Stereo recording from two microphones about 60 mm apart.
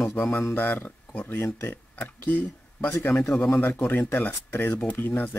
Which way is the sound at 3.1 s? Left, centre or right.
Centre.